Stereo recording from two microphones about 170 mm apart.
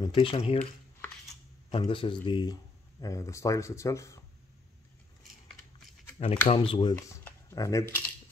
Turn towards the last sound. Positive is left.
turn(degrees=20)  # may be behind; listen again after turning